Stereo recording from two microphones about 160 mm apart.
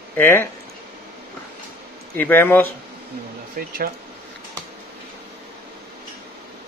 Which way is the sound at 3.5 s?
65° right (ahead or behind).